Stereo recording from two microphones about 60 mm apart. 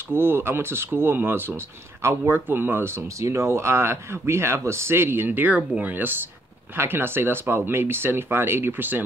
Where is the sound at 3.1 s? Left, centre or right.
Right.